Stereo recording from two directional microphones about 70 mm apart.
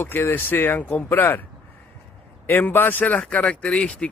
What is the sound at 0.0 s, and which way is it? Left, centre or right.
Speech, left.